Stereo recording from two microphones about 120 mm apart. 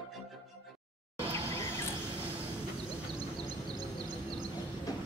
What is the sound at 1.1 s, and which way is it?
Music, 55° right (ahead or behind).